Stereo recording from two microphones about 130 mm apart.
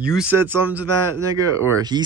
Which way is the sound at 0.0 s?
5° right (ahead or behind).